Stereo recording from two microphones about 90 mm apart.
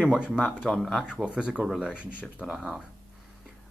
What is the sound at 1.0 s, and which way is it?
Speech, 10° right (ahead or behind).